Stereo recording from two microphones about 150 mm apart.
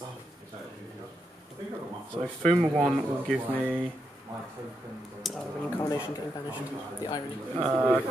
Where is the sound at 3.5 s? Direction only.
15° right (ahead or behind).